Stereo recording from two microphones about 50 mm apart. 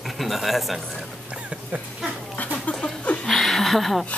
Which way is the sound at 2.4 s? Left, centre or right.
Left.